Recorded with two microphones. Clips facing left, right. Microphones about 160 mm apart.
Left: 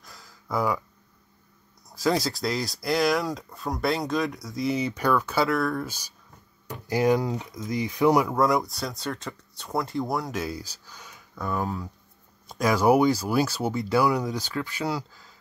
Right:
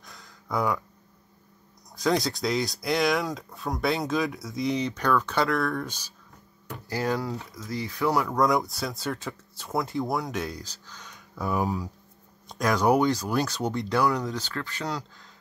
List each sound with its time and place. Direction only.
0.0 s a sound: centre (ahead or behind)
1.9 s speech: centre (ahead or behind)
8.4 s speech: centre (ahead or behind)
11.5 s speech: 15° right (ahead or behind)
12.4 s speech: 5° left (ahead or behind)